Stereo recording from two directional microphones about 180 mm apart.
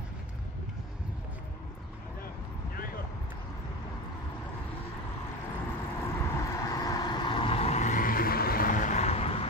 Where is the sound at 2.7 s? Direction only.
55° left (ahead or behind).